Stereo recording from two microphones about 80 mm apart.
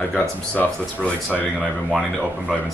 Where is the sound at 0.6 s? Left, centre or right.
Centre.